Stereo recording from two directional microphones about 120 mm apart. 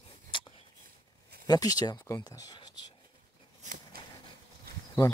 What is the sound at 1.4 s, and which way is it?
Speech, 35° left (ahead or behind).